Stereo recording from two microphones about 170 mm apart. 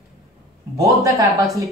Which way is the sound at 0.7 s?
20° right (ahead or behind).